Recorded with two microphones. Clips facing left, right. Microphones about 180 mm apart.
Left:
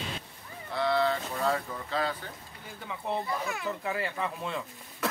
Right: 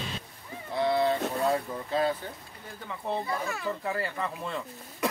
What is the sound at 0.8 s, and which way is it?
Vehicle, 20° right (ahead or behind).